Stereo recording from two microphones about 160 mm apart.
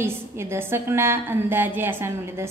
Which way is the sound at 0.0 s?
15° right (ahead or behind).